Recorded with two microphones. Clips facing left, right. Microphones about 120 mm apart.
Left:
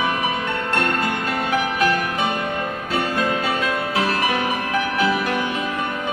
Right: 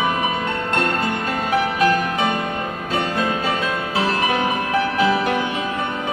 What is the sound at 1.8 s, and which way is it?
Music, 30° right (ahead or behind).